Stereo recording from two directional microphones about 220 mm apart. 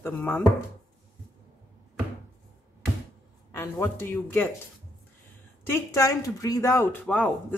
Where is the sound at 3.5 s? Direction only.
10° left (ahead or behind).